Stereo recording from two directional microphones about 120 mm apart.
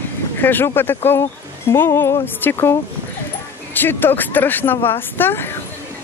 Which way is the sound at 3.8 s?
15° left (ahead or behind).